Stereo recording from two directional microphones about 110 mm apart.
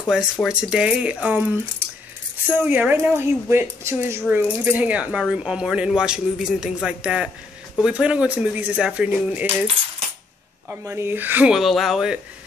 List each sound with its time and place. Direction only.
0.1 s a man's voice: 5° right (ahead or behind)
2.5 s a man's voice: 15° right (ahead or behind)
10.7 s a man's voice: 20° right (ahead or behind)
11.5 s speech: centre (ahead or behind)